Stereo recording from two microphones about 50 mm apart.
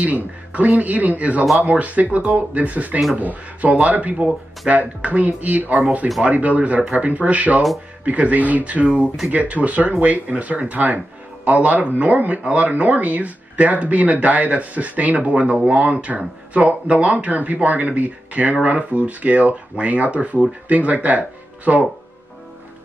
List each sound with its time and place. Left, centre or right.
0.0 s speech: right